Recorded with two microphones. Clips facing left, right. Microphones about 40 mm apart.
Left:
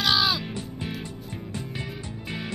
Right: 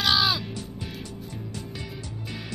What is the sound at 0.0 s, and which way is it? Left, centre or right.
Music, centre.